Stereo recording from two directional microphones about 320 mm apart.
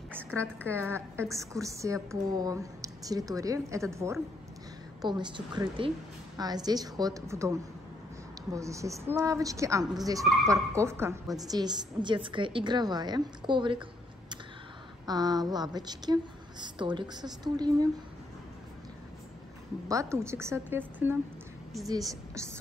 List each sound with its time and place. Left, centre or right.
0.4 s a woman's voice: centre
0.7 s speech: centre
15.0 s speech: centre
19.9 s a woman's voice: centre